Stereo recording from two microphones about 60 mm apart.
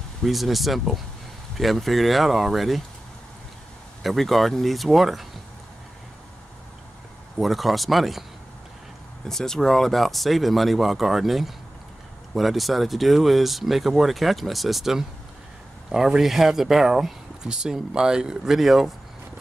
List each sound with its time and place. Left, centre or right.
0.2 s speech: centre
4.0 s speech: centre
7.3 s speech: centre
9.3 s speech: centre